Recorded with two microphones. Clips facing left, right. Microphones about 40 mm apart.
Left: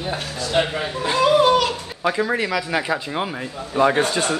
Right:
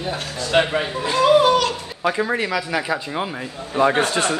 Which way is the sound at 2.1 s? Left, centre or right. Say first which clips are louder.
Even; centre.